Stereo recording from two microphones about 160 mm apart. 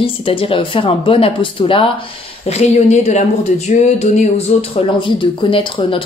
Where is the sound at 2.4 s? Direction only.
45° left (ahead or behind).